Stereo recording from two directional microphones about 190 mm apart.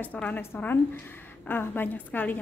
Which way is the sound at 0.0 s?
10° left (ahead or behind).